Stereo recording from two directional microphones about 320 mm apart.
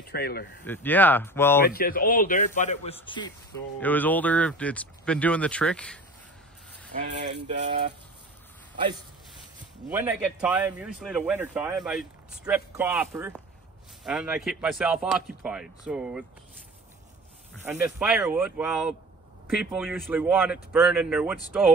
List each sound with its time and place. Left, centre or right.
0.0 s speech: left
0.7 s speech: centre
1.7 s a man's voice: left; by 5.9 s centre
7.0 s a sound: right
9.8 s a man's voice: centre
17.6 s speech: centre